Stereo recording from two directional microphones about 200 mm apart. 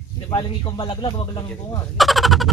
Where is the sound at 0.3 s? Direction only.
20° left (ahead or behind).